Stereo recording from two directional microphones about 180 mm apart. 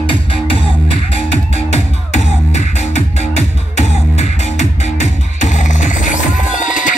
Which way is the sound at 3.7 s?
40° left (ahead or behind).